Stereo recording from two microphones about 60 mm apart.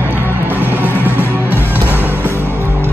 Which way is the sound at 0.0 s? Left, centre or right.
Right.